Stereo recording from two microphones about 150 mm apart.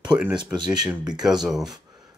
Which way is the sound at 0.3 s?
30° right (ahead or behind).